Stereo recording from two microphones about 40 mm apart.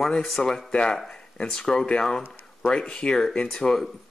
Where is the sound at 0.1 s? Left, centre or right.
Centre.